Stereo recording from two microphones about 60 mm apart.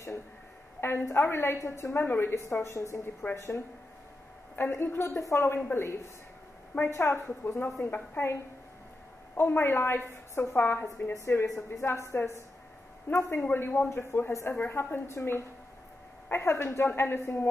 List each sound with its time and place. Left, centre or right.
0.7 s a woman's voice: left
4.6 s a woman's voice: left
9.3 s a woman's voice: left
11.8 s a woman's voice: left
13.4 s a woman's voice: left